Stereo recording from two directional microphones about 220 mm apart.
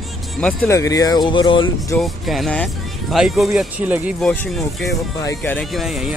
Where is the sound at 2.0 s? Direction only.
Centre (ahead or behind).